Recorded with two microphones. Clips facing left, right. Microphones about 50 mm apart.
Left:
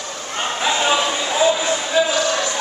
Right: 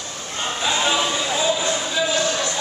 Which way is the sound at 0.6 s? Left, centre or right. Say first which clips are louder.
Left 2 dB; centre.